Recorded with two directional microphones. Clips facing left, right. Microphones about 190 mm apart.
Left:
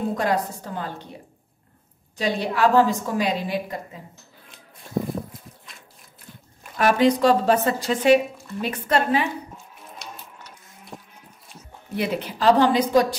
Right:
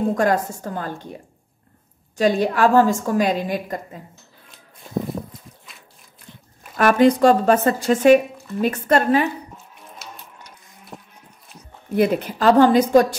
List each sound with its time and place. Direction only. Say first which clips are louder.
0.1 s speech: right 4 dB; 45° right (ahead or behind)
2.1 s speech: right 6 dB; 45° right (ahead or behind)
6.8 s speech: right 4 dB; 50° right (ahead or behind)
10.0 s a sound: even; centre (ahead or behind)
11.9 s speech: right 7 dB; 45° right (ahead or behind)